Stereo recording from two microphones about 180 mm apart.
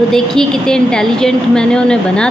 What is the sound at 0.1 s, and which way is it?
A woman's voice, 5° left (ahead or behind).